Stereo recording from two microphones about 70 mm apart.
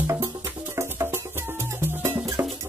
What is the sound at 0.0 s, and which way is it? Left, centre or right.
Music, right.